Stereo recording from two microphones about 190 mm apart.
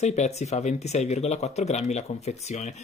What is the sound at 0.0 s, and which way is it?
Speech, 35° left (ahead or behind).